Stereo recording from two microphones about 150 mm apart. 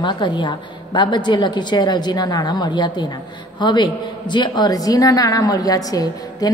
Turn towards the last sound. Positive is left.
turn(degrees=25)  # may be behind; listen again after turning